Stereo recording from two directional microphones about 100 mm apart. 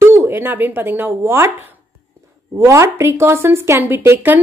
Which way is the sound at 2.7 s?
30° right (ahead or behind).